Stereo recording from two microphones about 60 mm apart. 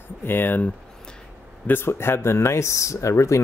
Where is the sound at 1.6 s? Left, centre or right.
Left.